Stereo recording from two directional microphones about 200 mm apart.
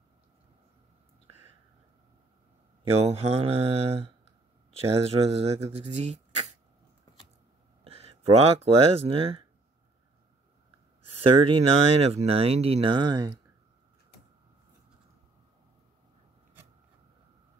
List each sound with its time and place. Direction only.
3.0 s speech: 30° right (ahead or behind)
7.8 s speech: 30° right (ahead or behind)
11.1 s speech: 25° right (ahead or behind)